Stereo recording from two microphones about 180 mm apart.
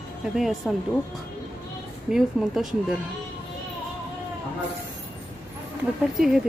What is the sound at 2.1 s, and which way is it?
Speech, centre (ahead or behind).